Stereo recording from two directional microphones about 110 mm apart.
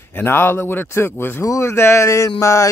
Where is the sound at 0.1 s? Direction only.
20° left (ahead or behind).